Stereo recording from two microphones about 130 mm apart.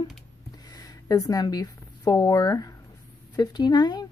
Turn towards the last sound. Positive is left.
turn(degrees=30)  # may be behind; listen again after turning